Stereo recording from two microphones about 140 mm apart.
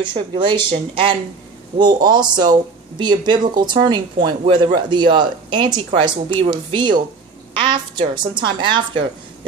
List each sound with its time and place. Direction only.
0.0 s speech: 35° right (ahead or behind)
1.8 s speech: 30° right (ahead or behind)